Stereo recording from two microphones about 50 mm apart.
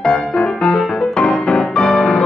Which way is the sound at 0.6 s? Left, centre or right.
Centre.